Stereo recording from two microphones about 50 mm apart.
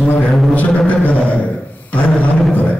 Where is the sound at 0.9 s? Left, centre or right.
Left.